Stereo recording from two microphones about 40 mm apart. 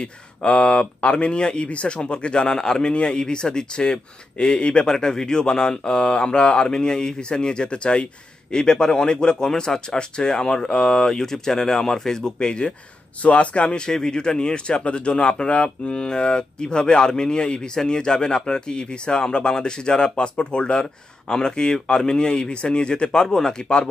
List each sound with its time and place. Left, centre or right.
0.0 s speech: left
13.2 s speech: left
15.9 s speech: centre